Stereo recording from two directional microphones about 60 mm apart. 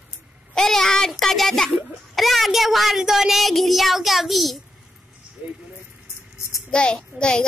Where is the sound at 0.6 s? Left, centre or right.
Centre.